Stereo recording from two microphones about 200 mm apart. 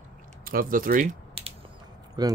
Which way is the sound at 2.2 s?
20° right (ahead or behind).